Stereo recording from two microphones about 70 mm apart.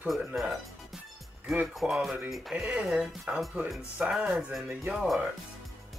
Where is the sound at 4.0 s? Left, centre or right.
Centre.